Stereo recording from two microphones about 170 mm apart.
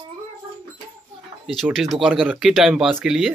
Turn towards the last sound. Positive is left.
turn(degrees=-5)  # may be behind; listen again after turning